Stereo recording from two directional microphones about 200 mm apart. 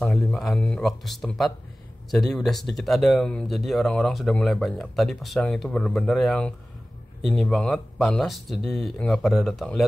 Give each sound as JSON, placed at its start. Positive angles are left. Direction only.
{"t": 0.0, "sound": "speech", "side_deg": 5}